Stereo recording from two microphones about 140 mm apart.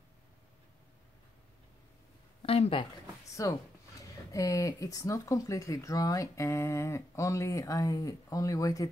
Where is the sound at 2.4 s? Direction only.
45° left (ahead or behind).